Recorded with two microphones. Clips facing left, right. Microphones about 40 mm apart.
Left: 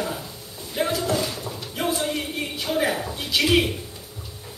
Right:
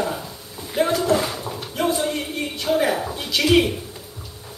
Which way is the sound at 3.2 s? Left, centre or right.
Centre.